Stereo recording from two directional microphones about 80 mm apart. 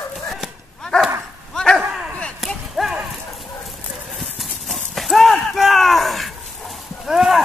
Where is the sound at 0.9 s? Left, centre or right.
Centre.